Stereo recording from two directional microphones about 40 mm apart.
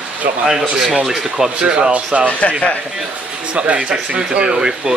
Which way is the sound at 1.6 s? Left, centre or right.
Right.